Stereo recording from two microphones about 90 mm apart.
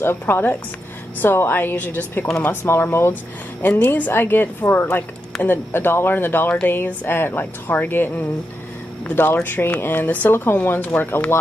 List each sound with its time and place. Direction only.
0.0 s speech: 25° left (ahead or behind)